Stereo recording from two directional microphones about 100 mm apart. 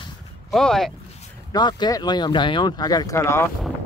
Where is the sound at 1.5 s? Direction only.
45° left (ahead or behind); by 3.5 s 25° left (ahead or behind).